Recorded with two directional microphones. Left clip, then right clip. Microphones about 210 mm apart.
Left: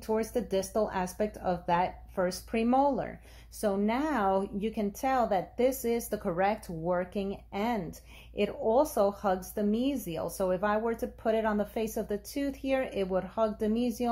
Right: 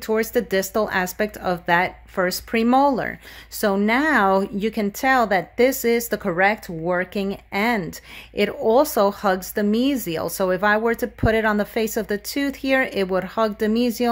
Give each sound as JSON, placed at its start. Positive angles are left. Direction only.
{"t": 0.0, "sound": "speech", "side_deg": -30}